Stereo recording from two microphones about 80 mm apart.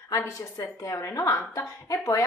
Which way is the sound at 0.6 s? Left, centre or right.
Left.